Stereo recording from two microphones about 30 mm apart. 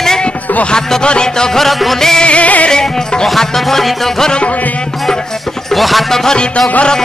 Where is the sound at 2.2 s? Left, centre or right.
Left.